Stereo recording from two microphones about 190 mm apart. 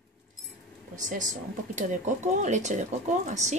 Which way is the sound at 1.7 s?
40° right (ahead or behind).